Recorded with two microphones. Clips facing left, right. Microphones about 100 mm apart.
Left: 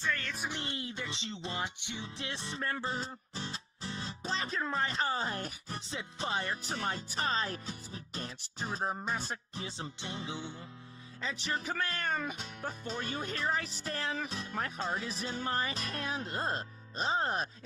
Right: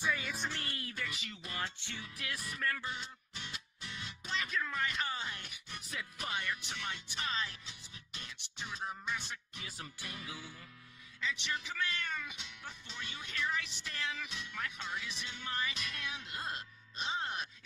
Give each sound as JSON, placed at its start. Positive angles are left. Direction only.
{"t": 0.0, "sound": "music", "side_deg": -10}
{"t": 0.4, "sound": "music", "side_deg": 20}
{"t": 11.1, "sound": "music", "side_deg": 40}